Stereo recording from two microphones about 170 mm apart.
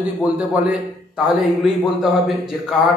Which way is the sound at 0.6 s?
5° right (ahead or behind).